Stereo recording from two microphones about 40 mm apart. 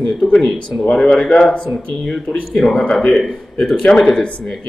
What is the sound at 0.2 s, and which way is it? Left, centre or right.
Speech, centre.